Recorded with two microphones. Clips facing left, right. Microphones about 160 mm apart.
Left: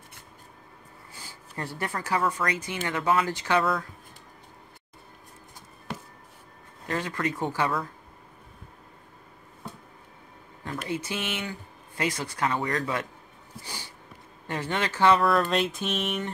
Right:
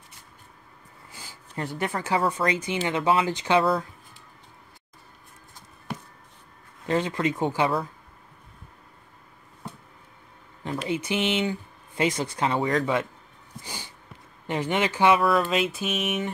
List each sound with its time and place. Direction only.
1.5 s speech: 20° right (ahead or behind)
6.9 s speech: 20° right (ahead or behind)
10.6 s speech: 20° right (ahead or behind)
14.5 s speech: 15° right (ahead or behind)
15.2 s music: centre (ahead or behind)